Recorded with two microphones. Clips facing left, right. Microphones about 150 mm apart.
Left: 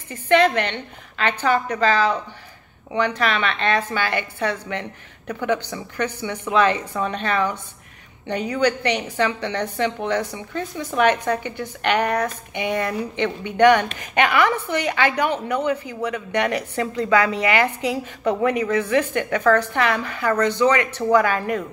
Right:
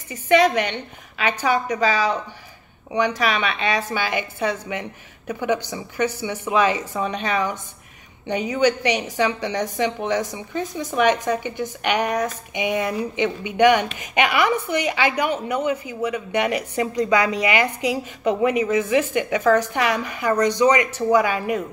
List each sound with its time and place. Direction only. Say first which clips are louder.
0.1 s a woman's voice: even; 10° right (ahead or behind)